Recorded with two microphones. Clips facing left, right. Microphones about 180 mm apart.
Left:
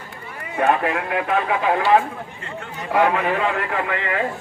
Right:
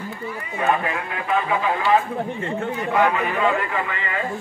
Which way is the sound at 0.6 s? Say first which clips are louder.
Left 3 dB; 65° left (ahead or behind).